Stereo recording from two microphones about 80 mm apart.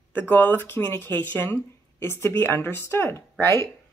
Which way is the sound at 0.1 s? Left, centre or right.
Left.